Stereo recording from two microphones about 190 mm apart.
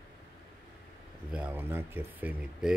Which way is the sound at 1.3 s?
5° right (ahead or behind).